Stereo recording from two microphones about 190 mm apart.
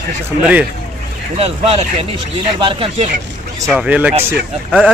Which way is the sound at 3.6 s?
5° right (ahead or behind).